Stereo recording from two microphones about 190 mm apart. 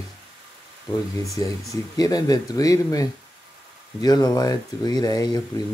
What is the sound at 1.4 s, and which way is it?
Speech, 20° left (ahead or behind).